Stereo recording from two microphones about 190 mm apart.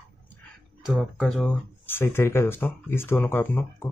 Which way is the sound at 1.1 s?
5° left (ahead or behind).